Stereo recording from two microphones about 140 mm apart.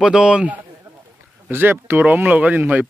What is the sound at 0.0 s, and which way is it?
A man's voice, 5° right (ahead or behind).